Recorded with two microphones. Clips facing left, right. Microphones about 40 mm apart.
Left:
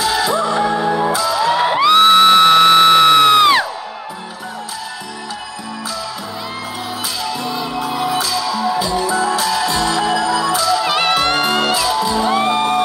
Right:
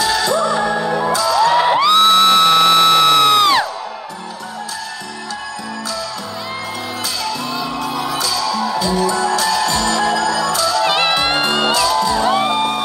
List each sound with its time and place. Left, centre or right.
0.0 s music: centre
7.2 s music: centre
10.9 s music: centre
11.7 s music: centre